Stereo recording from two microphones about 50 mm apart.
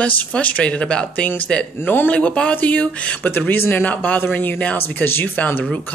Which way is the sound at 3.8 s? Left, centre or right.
Left.